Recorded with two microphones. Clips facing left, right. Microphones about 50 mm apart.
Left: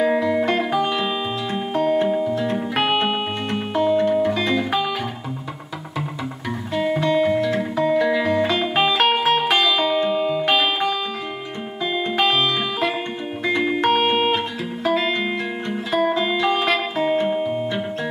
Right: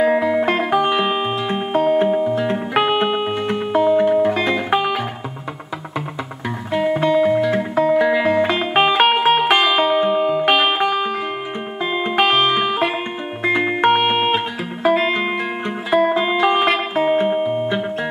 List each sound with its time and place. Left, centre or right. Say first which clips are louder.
0.0 s music: right 3 dB; centre; by 1.3 s right
1.5 s music: right 3 dB; centre
6.7 s music: right 3 dB; centre; by 10.4 s right
10.4 s music: right 3 dB; right